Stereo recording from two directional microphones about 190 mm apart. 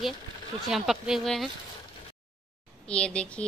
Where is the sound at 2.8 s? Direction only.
5° left (ahead or behind).